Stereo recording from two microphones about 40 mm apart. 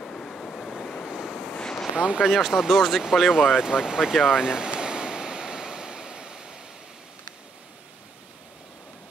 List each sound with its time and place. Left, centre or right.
0.0 s waves: centre
1.1 s waves: centre
1.6 s a sound: centre
2.0 s speech: right
2.2 s speech: centre
4.1 s waves: centre